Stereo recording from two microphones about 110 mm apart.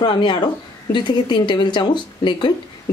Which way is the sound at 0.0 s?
45° left (ahead or behind).